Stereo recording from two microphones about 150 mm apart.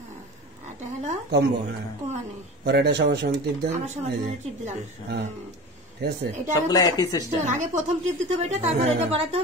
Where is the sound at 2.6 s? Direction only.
90° right.